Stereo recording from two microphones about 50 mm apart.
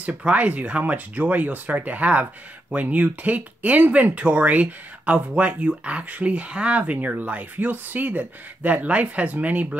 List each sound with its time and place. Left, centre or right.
0.2 s speech: right